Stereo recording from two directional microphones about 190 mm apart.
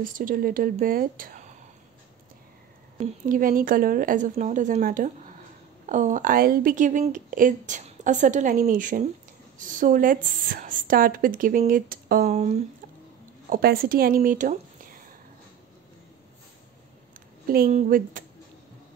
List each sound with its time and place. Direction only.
0.0 s speech: 45° right (ahead or behind)
3.0 s speech: 45° right (ahead or behind)
12.3 s speech: 35° right (ahead or behind)
13.5 s speech: 50° right (ahead or behind)
17.6 s speech: 40° right (ahead or behind)